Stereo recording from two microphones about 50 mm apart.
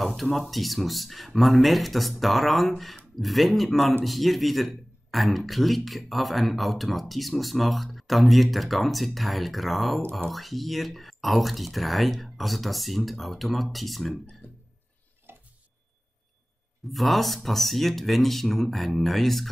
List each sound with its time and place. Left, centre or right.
0.0 s a man's voice: centre
14.4 s music: left
15.3 s tick-tock: right
16.9 s a man's voice: centre